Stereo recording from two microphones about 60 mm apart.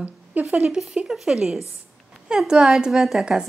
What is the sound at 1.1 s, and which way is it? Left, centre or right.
A woman's voice, centre.